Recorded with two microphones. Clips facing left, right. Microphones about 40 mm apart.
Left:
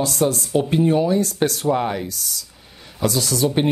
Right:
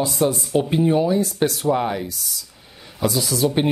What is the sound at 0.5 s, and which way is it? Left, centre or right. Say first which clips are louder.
Speech: left 1 dB; centre.